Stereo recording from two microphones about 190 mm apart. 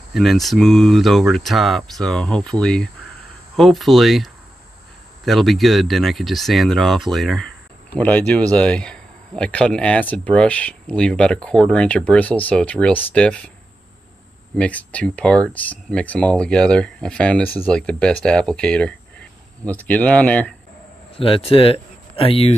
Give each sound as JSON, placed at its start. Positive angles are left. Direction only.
{"t": 0.1, "sound": "speech", "side_deg": 0}
{"t": 14.6, "sound": "speech", "side_deg": 5}
{"t": 21.2, "sound": "speech", "side_deg": 30}